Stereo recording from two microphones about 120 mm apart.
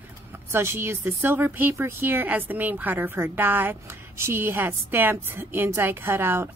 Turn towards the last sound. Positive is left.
turn(degrees=-20)  # may be behind; listen again after turning